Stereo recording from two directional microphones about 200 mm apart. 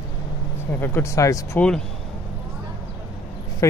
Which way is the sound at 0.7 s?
10° left (ahead or behind).